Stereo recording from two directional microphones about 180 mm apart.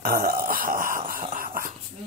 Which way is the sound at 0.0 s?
55° right (ahead or behind).